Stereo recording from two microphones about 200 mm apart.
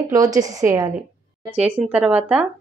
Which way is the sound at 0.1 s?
15° right (ahead or behind).